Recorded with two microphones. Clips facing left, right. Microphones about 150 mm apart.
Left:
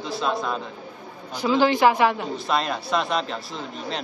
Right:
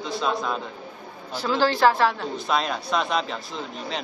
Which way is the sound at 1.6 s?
15° left (ahead or behind).